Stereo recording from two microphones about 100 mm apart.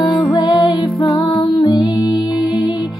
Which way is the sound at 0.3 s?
55° left (ahead or behind).